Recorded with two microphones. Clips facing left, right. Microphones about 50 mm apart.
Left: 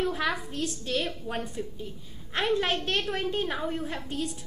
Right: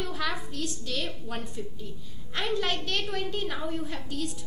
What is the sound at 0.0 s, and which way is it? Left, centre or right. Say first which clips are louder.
A woman's voice: left 4 dB; left.